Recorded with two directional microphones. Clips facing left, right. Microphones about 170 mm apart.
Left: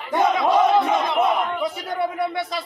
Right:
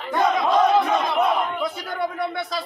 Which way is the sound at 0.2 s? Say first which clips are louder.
Left 1 dB; 10° left (ahead or behind).